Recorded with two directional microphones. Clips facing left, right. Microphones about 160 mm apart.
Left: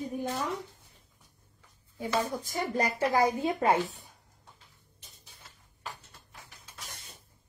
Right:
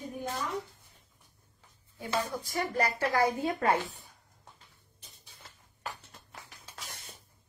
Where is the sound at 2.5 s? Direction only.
20° left (ahead or behind).